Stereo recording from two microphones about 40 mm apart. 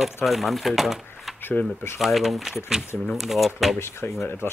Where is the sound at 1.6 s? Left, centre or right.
Left.